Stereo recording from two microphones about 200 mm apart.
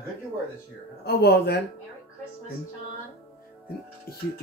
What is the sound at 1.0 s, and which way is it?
Speech, 55° left (ahead or behind).